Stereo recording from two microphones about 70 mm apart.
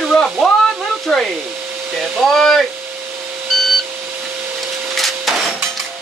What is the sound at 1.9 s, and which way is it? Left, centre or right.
Hair dryer, centre.